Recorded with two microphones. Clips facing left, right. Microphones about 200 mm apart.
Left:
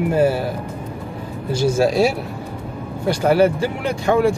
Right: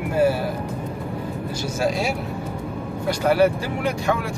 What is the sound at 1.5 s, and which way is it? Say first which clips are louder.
Speech: left 8 dB; 30° left (ahead or behind).